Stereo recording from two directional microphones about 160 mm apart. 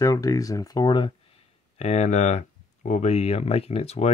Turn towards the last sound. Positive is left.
turn(degrees=40)  # may be behind; listen again after turning